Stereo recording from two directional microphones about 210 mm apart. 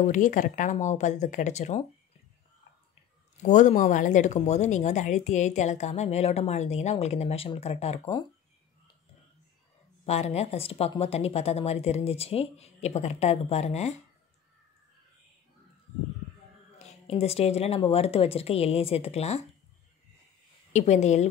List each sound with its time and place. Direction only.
0.0 s speech: 40° left (ahead or behind)
3.4 s speech: 35° left (ahead or behind)
10.0 s speech: 30° left (ahead or behind)
16.7 s speech: 30° left (ahead or behind)
20.7 s speech: 35° left (ahead or behind)